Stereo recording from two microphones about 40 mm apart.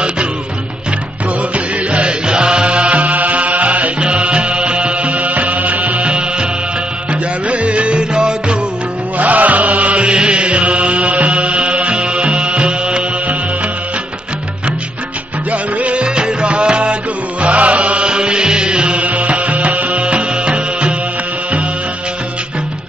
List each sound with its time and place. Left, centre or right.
1.5 s chant: right
4.0 s music: right
9.2 s chant: right
10.0 s music: right
15.5 s music: right
17.4 s mantra: right